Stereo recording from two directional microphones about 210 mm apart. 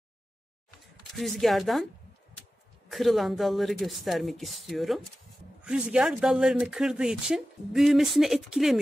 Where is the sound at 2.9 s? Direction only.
Centre (ahead or behind).